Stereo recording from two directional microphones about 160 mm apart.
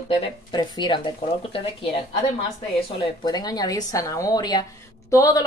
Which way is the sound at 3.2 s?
25° left (ahead or behind).